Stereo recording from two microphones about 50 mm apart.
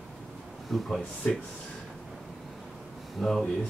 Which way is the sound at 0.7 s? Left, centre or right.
Centre.